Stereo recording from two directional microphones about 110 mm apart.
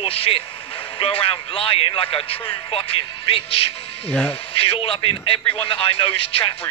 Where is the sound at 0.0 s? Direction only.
60° left (ahead or behind).